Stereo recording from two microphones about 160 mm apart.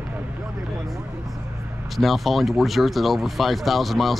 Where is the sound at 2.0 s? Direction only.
Centre (ahead or behind).